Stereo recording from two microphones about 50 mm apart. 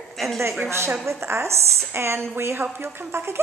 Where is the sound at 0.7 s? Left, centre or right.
Right.